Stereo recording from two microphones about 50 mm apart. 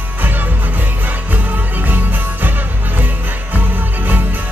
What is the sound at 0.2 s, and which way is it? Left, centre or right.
Music, right.